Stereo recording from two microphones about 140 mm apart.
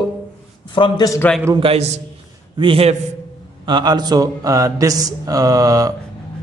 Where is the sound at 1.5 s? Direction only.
40° right (ahead or behind).